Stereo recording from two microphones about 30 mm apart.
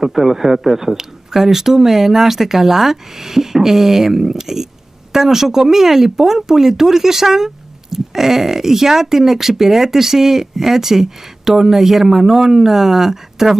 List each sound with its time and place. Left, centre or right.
0.0 s speech: centre